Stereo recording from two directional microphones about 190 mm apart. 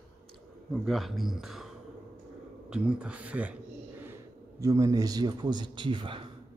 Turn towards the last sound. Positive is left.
turn(degrees=-25)  # may be behind; listen again after turning